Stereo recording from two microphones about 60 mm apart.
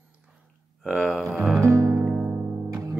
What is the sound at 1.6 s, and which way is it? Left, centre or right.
Music, right.